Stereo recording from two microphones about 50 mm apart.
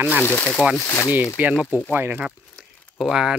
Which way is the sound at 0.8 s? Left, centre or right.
Left.